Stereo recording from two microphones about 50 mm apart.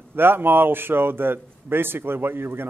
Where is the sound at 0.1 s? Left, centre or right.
Right.